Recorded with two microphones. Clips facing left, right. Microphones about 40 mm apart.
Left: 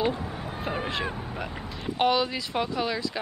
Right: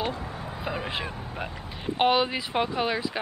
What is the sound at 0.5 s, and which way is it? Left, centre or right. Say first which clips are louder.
Cat: left 1 dB; centre.